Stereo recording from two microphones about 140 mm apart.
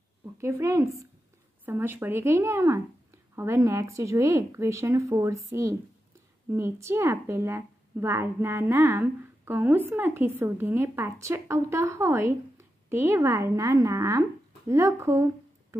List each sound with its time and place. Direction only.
0.2 s speech: 20° right (ahead or behind)